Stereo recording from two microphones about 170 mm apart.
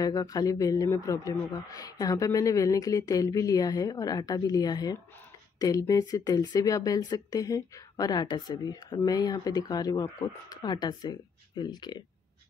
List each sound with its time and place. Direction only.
0.0 s a man's voice: 20° left (ahead or behind)